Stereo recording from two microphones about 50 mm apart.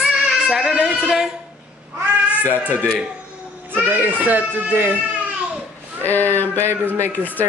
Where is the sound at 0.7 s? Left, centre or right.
Centre.